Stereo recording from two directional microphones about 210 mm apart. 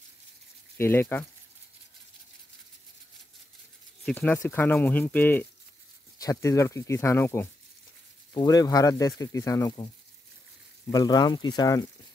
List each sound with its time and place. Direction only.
0.7 s speech: 10° left (ahead or behind)
4.0 s speech: 5° left (ahead or behind)
10.9 s speech: 20° left (ahead or behind)